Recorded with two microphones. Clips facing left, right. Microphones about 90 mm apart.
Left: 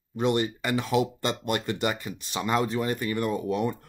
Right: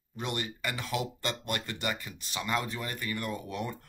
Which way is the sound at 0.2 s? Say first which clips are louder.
Left 10 dB; 25° left (ahead or behind).